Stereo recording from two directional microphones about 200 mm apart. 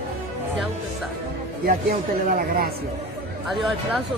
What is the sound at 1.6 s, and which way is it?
Speech, 45° right (ahead or behind).